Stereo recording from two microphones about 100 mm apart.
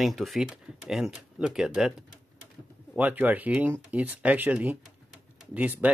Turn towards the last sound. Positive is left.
turn(degrees=-15)  # may be behind; listen again after turning